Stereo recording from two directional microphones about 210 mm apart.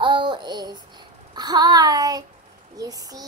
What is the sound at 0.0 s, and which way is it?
Child singing, 20° right (ahead or behind).